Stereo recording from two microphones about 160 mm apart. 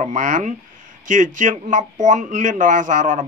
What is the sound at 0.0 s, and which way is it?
A man's voice, 50° right (ahead or behind).